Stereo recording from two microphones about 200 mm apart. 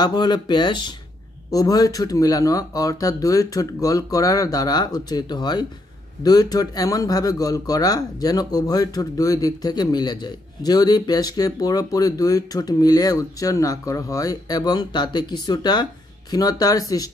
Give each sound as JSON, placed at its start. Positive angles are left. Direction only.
{"t": 0.0, "sound": "speech", "side_deg": 20}